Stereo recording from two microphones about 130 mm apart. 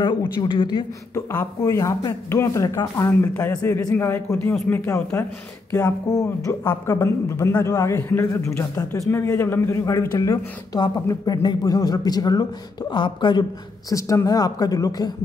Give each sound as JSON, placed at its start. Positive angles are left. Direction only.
{"t": 0.0, "sound": "speech", "side_deg": 35}
{"t": 1.1, "sound": "speech", "side_deg": 15}
{"t": 6.6, "sound": "speech", "side_deg": 15}